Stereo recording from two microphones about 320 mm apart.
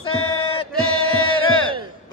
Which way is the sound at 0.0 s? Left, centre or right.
Centre.